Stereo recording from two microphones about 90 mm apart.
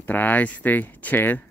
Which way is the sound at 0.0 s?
20° left (ahead or behind).